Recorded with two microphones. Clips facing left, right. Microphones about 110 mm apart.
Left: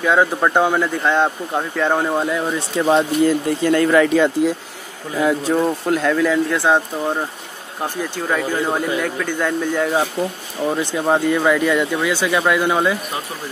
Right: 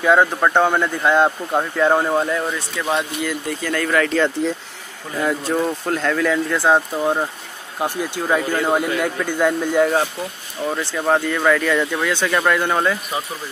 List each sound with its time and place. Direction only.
0.0 s speech: centre (ahead or behind)
2.7 s speech: 35° left (ahead or behind)
3.4 s speech: 25° left (ahead or behind); by 9.8 s 10° right (ahead or behind)
10.6 s speech: 15° left (ahead or behind)